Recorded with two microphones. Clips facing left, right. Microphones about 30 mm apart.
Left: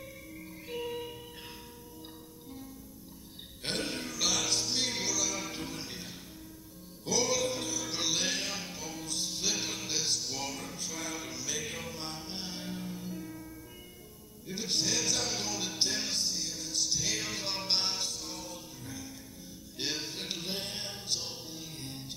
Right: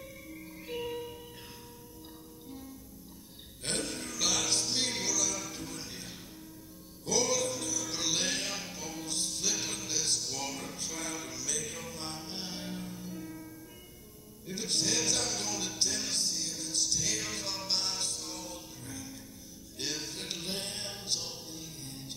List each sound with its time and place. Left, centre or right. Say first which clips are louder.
0.0 s music: even; centre
0.9 s music: even; centre
3.8 s music: left 2 dB; left
4.1 s music: right 1 dB; centre
7.1 s music: even; centre
7.4 s music: left 1 dB; left; by 9.3 s centre
9.3 s music: left 3 dB; centre
10.1 s music: even; centre
12.0 s music: even; centre
14.4 s a sound: even; centre
15.8 s music: left 2 dB; left
16.1 s music: even; centre; by 17.9 s left
17.9 s music: even; centre
19.8 s music: left 2 dB; centre